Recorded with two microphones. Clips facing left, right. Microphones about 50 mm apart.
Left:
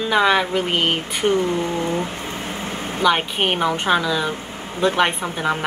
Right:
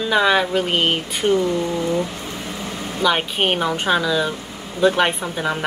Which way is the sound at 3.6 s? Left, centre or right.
Centre.